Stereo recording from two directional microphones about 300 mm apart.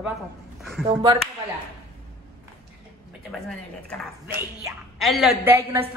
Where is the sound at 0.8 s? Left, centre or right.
Centre.